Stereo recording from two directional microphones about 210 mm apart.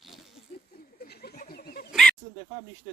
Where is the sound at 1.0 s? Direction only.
50° left (ahead or behind).